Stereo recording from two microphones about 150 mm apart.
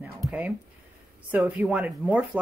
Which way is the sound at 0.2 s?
5° right (ahead or behind).